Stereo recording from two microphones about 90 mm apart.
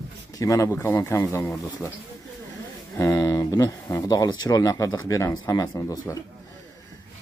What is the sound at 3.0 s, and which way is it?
Speech, 30° left (ahead or behind).